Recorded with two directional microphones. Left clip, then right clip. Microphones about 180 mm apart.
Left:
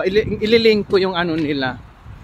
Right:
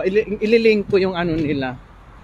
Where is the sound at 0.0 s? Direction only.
5° left (ahead or behind).